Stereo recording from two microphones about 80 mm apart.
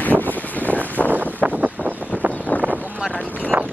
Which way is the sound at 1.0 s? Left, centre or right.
Centre.